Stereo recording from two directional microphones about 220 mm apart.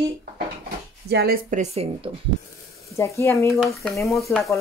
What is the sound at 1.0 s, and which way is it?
Speech, 45° right (ahead or behind).